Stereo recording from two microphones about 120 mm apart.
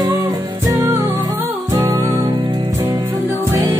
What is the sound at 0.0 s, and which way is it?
Music, 25° right (ahead or behind).